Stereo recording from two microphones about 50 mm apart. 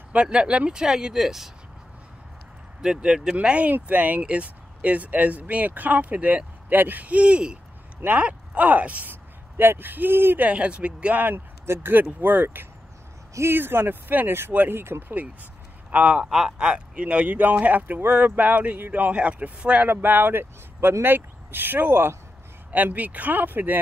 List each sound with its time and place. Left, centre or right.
0.1 s speech: right; by 1.5 s centre
2.8 s speech: centre
9.6 s speech: right
10.4 s speech: right
11.6 s speech: right
11.9 s speech: right
13.5 s speech: right
15.9 s speech: right
16.3 s speech: centre
16.5 s speech: centre
19.9 s speech: right
22.7 s speech: right